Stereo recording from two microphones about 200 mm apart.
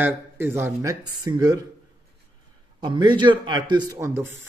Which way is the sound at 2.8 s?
20° right (ahead or behind).